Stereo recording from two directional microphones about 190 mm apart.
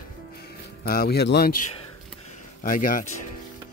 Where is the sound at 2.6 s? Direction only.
45° left (ahead or behind).